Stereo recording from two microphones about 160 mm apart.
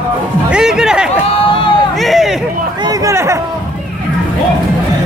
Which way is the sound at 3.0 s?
20° right (ahead or behind).